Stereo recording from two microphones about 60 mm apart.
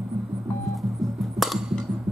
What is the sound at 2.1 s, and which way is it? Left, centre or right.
Music, centre.